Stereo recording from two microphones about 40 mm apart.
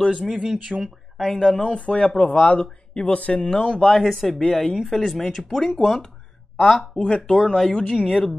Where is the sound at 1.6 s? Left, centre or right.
Left.